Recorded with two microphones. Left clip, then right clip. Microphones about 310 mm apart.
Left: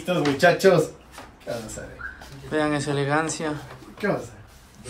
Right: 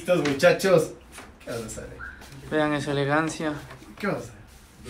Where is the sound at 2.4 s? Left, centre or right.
Centre.